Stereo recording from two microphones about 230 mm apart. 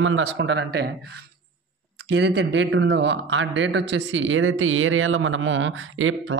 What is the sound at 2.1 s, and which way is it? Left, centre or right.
Speech, right.